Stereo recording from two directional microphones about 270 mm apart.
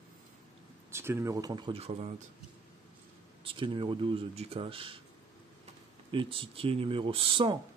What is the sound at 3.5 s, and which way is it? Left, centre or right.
Speech, centre.